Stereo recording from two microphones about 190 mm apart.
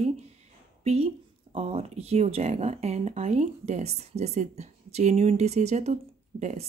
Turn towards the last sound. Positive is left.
turn(degrees=-35)  # may be behind; listen again after turning